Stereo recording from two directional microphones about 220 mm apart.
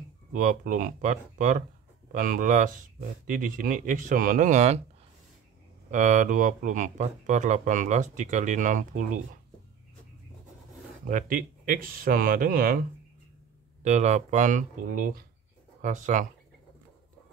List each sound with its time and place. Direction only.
0.3 s speech: 35° right (ahead or behind)
5.9 s speech: 35° right (ahead or behind)
11.1 s speech: 35° right (ahead or behind)
13.8 s speech: 30° right (ahead or behind)